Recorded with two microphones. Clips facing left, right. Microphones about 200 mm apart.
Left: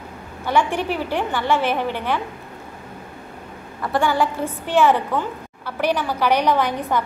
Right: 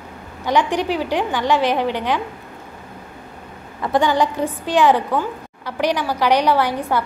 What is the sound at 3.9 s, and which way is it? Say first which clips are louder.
A woman's voice: right 3 dB; 20° right (ahead or behind).